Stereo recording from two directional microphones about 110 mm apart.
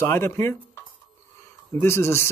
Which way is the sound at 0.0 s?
20° left (ahead or behind).